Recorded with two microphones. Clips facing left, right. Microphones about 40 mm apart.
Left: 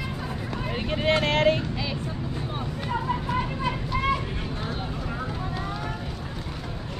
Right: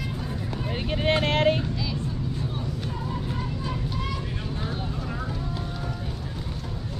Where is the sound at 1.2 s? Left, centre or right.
Left.